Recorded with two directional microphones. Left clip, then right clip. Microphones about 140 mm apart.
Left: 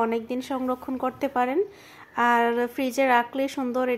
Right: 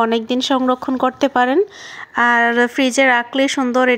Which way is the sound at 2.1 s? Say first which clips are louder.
Right 7 dB; 30° right (ahead or behind).